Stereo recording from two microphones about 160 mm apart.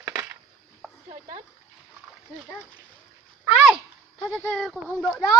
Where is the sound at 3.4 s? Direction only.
10° right (ahead or behind).